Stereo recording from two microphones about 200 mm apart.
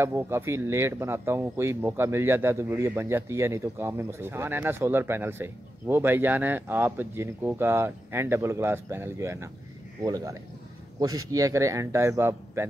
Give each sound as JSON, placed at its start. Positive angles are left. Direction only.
{"t": 0.0, "sound": "speech", "side_deg": -10}